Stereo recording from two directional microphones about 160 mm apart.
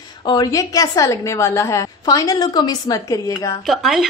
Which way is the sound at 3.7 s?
Centre (ahead or behind).